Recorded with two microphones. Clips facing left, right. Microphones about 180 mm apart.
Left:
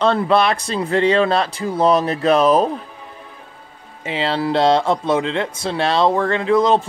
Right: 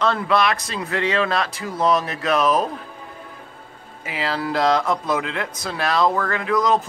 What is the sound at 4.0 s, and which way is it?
A man's voice, 25° left (ahead or behind).